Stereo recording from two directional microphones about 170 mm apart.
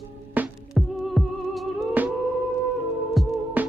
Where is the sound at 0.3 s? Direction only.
5° right (ahead or behind).